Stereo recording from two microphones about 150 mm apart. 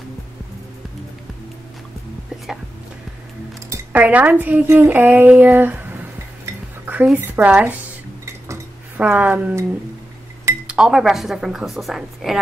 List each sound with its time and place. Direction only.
3.7 s speech: 10° right (ahead or behind)
8.5 s a sound: 10° right (ahead or behind)
10.7 s a woman's voice: 5° right (ahead or behind)